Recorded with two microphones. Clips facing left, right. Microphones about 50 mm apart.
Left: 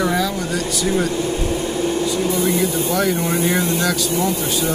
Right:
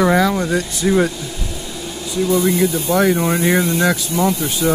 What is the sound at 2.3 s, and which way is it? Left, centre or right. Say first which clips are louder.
Speech: right 2 dB; right.